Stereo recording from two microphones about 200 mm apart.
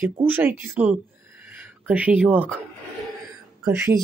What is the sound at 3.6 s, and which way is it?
Speech, 15° right (ahead or behind).